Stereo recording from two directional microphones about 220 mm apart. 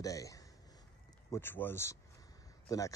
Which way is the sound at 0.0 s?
15° left (ahead or behind).